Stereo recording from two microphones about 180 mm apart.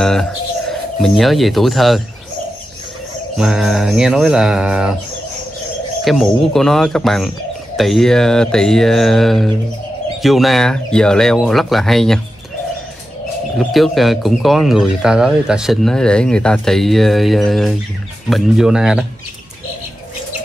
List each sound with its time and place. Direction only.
0.0 s speech: 5° left (ahead or behind)
3.3 s speech: centre (ahead or behind)
6.0 s speech: centre (ahead or behind)
13.6 s speech: centre (ahead or behind)